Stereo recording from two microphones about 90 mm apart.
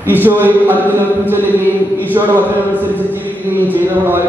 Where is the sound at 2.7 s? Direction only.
20° left (ahead or behind).